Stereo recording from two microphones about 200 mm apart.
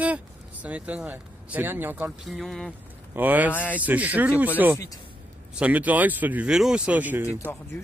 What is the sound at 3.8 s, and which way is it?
Speech, 5° right (ahead or behind).